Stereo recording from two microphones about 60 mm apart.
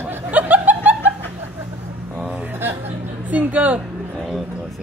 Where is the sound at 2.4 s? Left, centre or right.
Right.